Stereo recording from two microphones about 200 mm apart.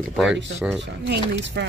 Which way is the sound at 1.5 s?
55° right (ahead or behind).